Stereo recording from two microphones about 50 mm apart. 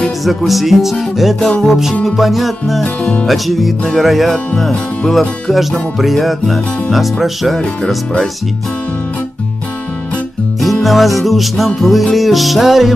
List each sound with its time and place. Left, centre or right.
0.0 s speech: centre
0.5 s music: centre
2.8 s music: left
3.3 s music: centre
10.6 s music: centre